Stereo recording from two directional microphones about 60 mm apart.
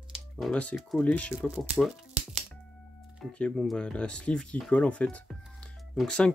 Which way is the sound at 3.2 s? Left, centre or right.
Centre.